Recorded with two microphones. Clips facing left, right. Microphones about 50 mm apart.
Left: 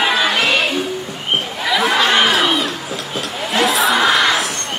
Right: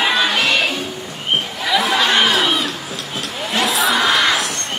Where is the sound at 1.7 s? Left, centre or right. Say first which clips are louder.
Left 1 dB; centre.